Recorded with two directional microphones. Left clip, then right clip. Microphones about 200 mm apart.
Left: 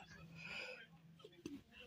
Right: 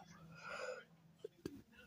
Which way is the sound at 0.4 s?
20° right (ahead or behind).